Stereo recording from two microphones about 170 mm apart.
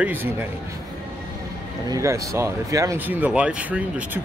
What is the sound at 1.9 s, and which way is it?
Speech, 20° right (ahead or behind).